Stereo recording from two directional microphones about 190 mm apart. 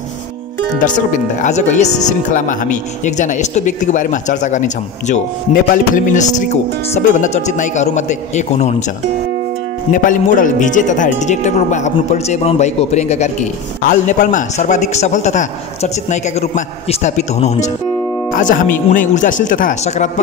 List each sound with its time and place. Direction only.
0.7 s speech: 40° left (ahead or behind)
10.0 s speech: 45° left (ahead or behind)